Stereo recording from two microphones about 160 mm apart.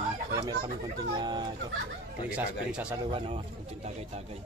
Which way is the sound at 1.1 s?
25° right (ahead or behind).